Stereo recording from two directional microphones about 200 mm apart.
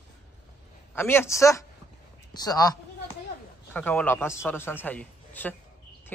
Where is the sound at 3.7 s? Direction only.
10° left (ahead or behind).